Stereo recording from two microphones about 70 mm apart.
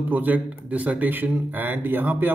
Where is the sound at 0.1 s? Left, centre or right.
Right.